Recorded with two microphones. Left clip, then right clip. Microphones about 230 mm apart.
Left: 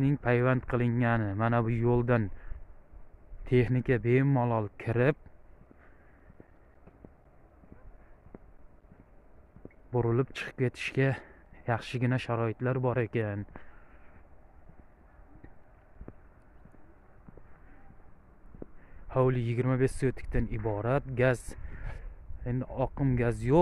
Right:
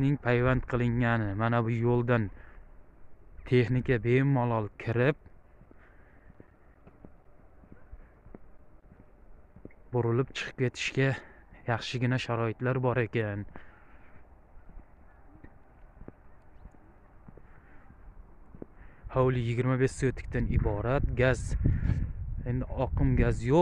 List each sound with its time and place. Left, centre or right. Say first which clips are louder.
0.0 s speech: even; centre
8.3 s a sound: even; centre
9.8 s speech: even; centre
19.0 s speech: even; centre